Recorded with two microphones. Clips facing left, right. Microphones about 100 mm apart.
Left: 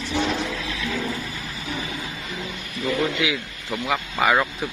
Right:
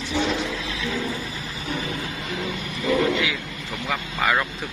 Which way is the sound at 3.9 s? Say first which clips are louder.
Left 3 dB; 15° left (ahead or behind).